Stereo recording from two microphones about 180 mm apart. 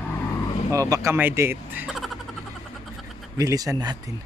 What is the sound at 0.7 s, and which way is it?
Speech, 20° right (ahead or behind).